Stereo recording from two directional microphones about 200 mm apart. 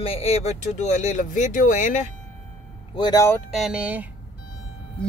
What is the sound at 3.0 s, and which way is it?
Speech, 20° left (ahead or behind).